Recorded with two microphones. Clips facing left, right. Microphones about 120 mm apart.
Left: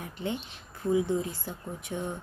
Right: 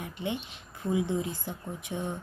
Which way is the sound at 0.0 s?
20° right (ahead or behind).